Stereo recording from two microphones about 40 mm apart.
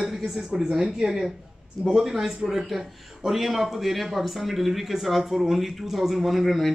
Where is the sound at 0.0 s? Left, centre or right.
Centre.